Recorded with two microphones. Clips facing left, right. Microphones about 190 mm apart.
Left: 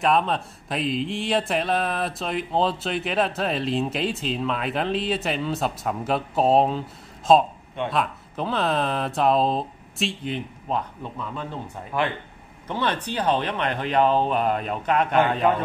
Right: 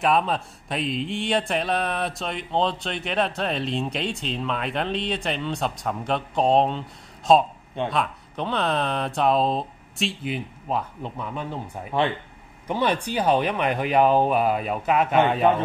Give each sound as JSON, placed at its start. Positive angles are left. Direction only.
{"t": 0.0, "sound": "speech", "side_deg": 0}
{"t": 11.9, "sound": "speech", "side_deg": -25}
{"t": 12.6, "sound": "speech", "side_deg": -10}